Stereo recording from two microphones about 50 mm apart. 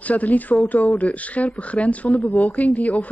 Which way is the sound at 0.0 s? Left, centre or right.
Left.